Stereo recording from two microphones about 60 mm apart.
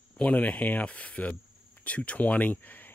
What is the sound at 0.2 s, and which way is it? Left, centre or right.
Speech, left.